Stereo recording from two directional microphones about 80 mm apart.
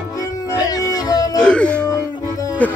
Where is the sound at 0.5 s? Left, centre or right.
Left.